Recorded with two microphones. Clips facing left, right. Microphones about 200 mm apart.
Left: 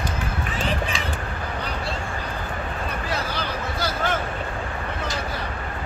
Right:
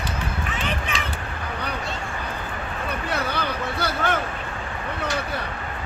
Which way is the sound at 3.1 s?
60° right (ahead or behind).